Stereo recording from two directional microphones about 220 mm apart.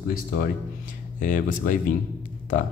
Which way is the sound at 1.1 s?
35° left (ahead or behind).